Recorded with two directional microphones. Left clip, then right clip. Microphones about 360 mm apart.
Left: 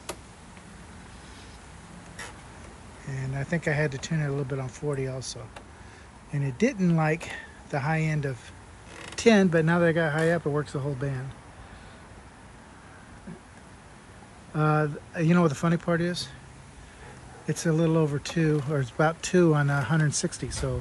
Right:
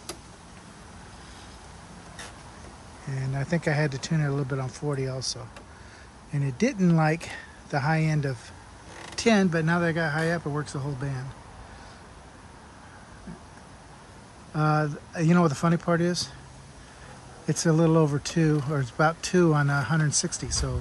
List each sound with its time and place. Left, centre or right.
3.1 s speech: centre
14.5 s speech: centre
17.5 s speech: centre